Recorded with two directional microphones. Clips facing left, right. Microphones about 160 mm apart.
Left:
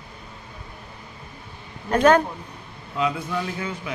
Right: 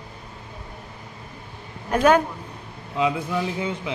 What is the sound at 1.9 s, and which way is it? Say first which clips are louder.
A man's voice: left 1 dB; 10° right (ahead or behind).